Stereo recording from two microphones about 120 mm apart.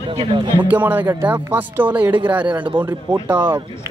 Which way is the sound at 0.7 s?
15° right (ahead or behind).